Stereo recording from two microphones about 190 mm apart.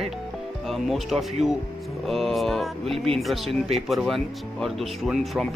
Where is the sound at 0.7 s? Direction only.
Centre (ahead or behind).